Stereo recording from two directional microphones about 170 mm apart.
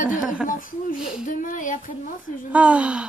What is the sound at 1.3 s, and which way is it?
Speech, 50° left (ahead or behind).